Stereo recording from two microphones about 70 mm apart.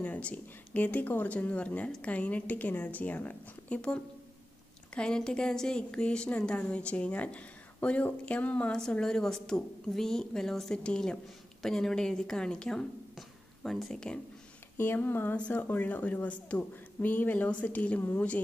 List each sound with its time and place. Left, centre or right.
0.0 s a woman's voice: left
13.1 s speech: centre
14.8 s speech: left